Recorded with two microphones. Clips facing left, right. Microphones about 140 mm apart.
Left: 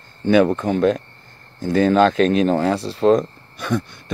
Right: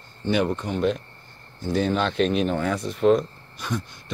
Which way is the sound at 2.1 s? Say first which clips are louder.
Left 6 dB; 90° left.